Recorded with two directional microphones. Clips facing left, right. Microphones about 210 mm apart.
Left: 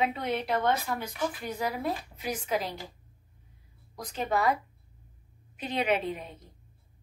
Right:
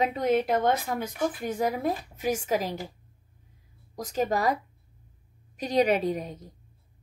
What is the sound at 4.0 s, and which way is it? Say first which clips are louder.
A woman's voice: right 3 dB; 40° right (ahead or behind).